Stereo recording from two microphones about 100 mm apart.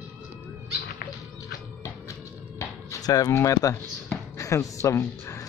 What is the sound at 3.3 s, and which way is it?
Speech, 30° left (ahead or behind).